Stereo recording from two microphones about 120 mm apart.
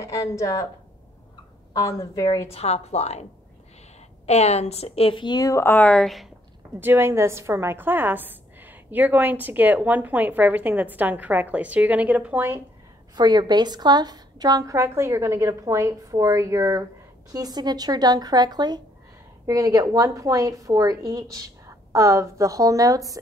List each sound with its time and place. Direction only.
0.0 s a woman's voice: 25° left (ahead or behind)
1.7 s a woman's voice: 25° left (ahead or behind)
2.5 s a woman's voice: 60° left (ahead or behind)
4.3 s a woman's voice: 65° left (ahead or behind); by 6.2 s 5° left (ahead or behind)
6.8 s a woman's voice: 20° right (ahead or behind)
13.1 s a woman's voice: 35° right (ahead or behind)